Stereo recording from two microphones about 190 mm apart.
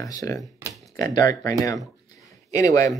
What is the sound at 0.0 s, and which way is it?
Speech, 15° left (ahead or behind).